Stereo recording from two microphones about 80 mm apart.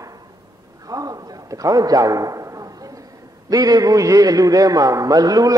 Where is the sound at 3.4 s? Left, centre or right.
Right.